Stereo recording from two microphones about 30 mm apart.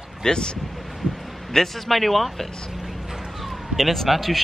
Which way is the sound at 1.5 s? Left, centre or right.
Centre.